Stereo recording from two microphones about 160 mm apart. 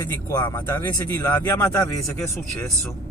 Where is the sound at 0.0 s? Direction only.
20° left (ahead or behind).